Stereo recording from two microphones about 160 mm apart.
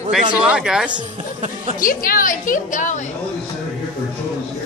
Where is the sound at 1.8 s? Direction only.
60° left (ahead or behind).